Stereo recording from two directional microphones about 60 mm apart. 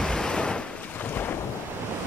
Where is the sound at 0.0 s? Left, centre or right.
Centre.